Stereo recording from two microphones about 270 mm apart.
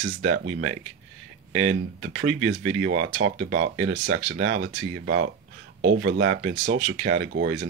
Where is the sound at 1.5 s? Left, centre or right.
Right.